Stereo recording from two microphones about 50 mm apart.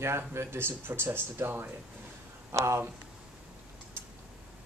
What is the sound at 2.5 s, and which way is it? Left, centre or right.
Speech, right.